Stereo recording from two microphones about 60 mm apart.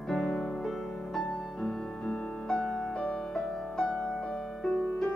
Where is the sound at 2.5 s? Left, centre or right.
Centre.